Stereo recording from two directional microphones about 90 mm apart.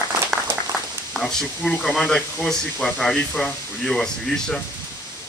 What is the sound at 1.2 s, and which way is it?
Speech, 5° left (ahead or behind).